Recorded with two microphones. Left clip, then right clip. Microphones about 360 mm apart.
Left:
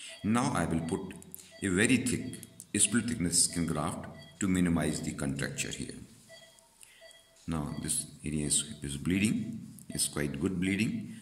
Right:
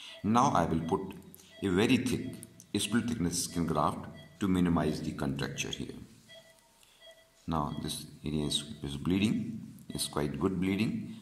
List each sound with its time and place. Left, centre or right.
0.0 s speech: centre
7.4 s speech: centre